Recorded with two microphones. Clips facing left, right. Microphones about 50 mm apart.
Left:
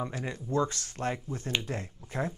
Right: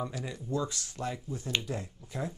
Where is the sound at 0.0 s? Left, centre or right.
Left.